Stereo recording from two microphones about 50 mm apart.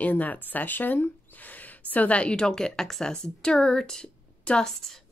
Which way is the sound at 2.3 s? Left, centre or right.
Centre.